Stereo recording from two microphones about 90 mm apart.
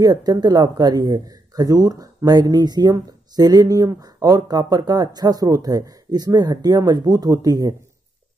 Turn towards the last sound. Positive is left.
turn(degrees=-45)  # may be behind; listen again after turning